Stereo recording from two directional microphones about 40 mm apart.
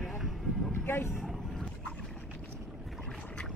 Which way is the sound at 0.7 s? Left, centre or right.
Left.